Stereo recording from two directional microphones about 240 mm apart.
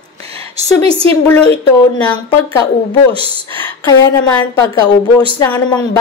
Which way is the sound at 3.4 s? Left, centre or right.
Centre.